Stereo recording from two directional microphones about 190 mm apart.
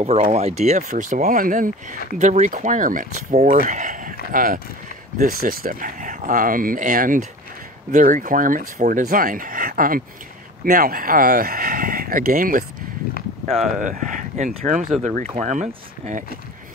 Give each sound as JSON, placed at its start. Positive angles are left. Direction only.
{"t": 0.0, "sound": "speech", "side_deg": -40}
{"t": 13.7, "sound": "speech", "side_deg": -45}